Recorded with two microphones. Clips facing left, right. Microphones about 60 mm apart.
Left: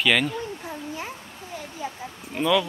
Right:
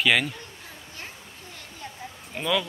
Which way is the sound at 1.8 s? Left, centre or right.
Centre.